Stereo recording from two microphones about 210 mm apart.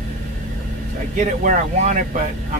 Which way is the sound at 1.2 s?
35° right (ahead or behind).